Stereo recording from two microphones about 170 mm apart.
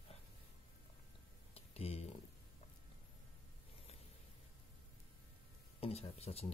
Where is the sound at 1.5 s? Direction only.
35° left (ahead or behind).